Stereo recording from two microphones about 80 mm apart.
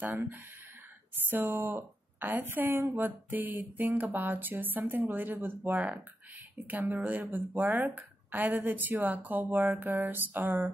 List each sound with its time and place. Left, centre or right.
0.1 s a woman's voice: right